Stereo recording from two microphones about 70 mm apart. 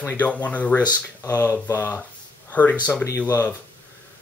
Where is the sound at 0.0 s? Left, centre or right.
Left.